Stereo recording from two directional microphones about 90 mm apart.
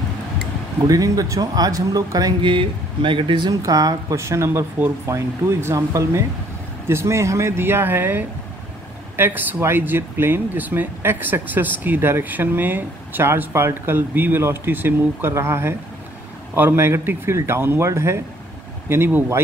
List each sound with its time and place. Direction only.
0.8 s speech: 40° right (ahead or behind)
2.4 s speech: 70° right (ahead or behind)
3.4 s speech: 45° right (ahead or behind); by 19.4 s 25° right (ahead or behind)